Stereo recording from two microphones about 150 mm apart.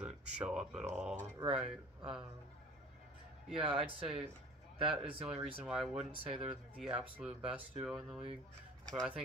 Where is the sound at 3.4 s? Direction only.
5° right (ahead or behind).